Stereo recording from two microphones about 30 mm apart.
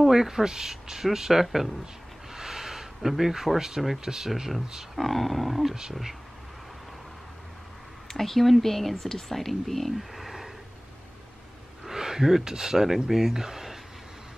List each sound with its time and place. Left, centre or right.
0.0 s speech: centre
2.3 s a sound: centre
3.5 s speech: centre
4.9 s wild animals: centre
8.1 s speech: centre
9.9 s a sound: centre
11.9 s speech: centre